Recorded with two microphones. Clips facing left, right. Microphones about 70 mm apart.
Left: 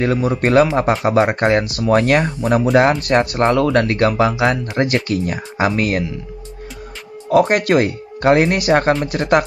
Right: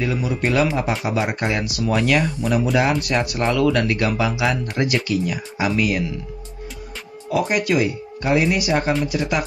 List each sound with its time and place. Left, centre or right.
0.0 s speech: left
7.2 s speech: left